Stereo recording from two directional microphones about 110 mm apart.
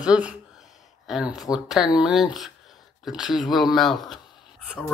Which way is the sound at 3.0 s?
5° right (ahead or behind).